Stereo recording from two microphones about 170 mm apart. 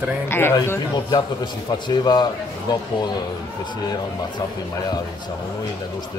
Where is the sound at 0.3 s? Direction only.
15° left (ahead or behind).